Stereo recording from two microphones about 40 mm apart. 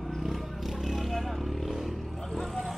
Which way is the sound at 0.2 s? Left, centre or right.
Centre.